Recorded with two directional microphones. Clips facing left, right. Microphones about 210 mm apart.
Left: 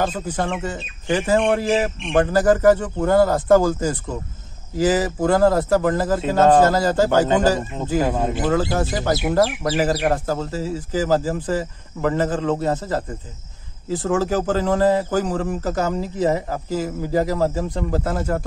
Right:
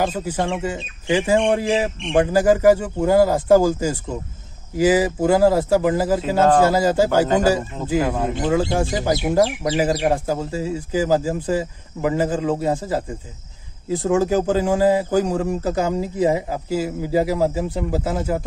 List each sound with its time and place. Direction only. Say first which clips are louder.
0.0 s a man's voice: right 1 dB; 10° right (ahead or behind)
8.0 s speech: left 2 dB; 20° left (ahead or behind)
8.7 s a man's voice: right 1 dB; 10° right (ahead or behind)